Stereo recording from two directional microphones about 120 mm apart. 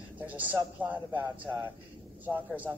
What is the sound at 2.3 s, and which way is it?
Speech, 10° right (ahead or behind).